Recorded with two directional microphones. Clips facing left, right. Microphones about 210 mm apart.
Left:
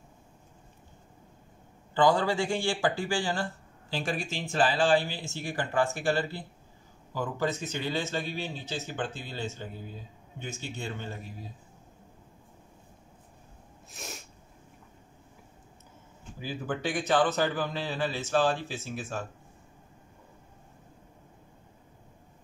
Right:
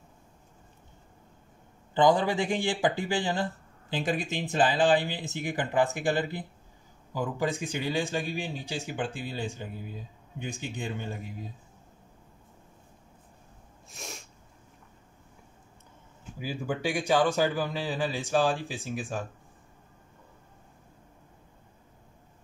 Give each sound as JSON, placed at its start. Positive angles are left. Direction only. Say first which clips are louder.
{"t": 2.0, "sound": "speech", "louder": "right 1 dB", "side_deg": -20}
{"t": 13.8, "sound": "sneeze", "louder": "even", "side_deg": 0}
{"t": 16.3, "sound": "speech", "louder": "right 1 dB", "side_deg": -10}